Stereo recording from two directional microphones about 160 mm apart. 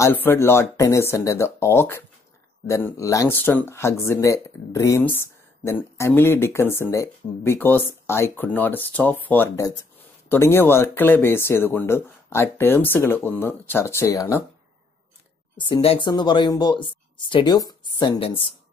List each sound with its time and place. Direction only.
0.0 s speech: 15° left (ahead or behind)
15.5 s speech: 35° left (ahead or behind)